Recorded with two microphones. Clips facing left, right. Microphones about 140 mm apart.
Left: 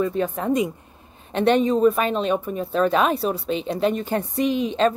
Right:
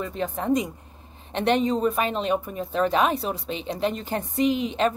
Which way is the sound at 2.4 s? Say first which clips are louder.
Left 3 dB; 55° left (ahead or behind).